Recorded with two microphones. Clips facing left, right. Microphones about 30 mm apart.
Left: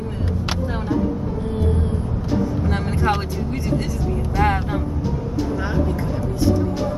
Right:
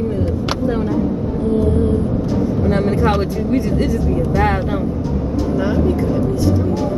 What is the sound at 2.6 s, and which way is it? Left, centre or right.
Vehicle, centre.